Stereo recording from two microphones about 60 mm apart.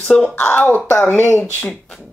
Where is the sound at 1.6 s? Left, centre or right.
Centre.